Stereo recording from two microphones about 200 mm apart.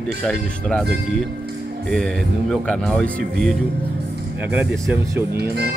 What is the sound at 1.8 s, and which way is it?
Speech, centre (ahead or behind).